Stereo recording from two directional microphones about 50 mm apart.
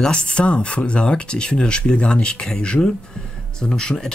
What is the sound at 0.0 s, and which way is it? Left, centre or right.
Speech, centre.